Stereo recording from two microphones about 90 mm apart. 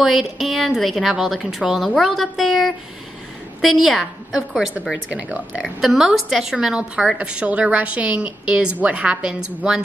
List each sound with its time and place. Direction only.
0.0 s a woman's voice: 5° right (ahead or behind)